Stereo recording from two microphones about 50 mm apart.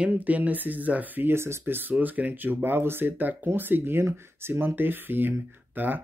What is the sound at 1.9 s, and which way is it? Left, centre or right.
Speech, right.